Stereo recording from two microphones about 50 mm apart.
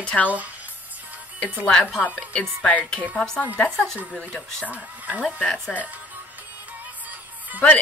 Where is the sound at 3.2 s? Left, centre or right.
Centre.